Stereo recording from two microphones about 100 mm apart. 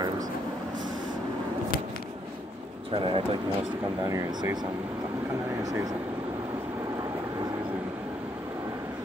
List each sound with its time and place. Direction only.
2.9 s speech: 60° right (ahead or behind)
4.0 s speech: 35° right (ahead or behind)
5.6 s speech: 35° right (ahead or behind)